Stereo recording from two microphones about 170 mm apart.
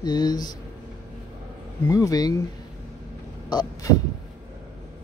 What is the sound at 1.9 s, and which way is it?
Speech, 20° left (ahead or behind).